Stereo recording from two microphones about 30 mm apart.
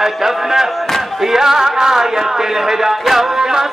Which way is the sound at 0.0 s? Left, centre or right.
Centre.